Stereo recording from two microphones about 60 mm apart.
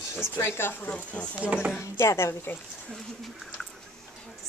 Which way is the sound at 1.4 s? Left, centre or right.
Centre.